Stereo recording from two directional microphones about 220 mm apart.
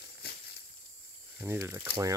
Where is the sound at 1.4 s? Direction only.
10° right (ahead or behind).